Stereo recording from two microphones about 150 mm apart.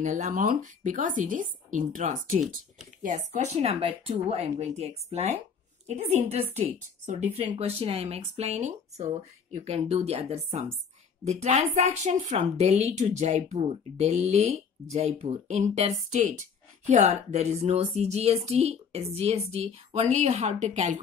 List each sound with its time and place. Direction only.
0.0 s a woman's voice: 55° right (ahead or behind)